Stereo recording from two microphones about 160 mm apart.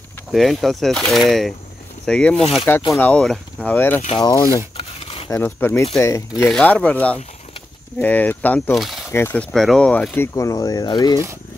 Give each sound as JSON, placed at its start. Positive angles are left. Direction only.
{"t": 0.3, "sound": "speech", "side_deg": 0}
{"t": 4.7, "sound": "a sound", "side_deg": 35}
{"t": 5.3, "sound": "speech", "side_deg": 15}
{"t": 6.4, "sound": "speech", "side_deg": 5}
{"t": 8.7, "sound": "speech", "side_deg": 0}
{"t": 9.1, "sound": "speech", "side_deg": 10}